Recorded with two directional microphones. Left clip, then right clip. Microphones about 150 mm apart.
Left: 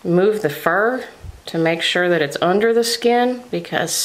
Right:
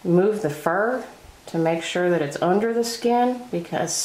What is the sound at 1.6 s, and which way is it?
Speech, 25° left (ahead or behind).